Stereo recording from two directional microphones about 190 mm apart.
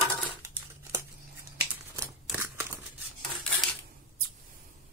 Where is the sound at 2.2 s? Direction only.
10° right (ahead or behind).